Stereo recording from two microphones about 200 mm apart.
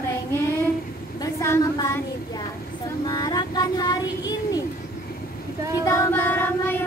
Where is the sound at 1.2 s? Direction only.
15° left (ahead or behind).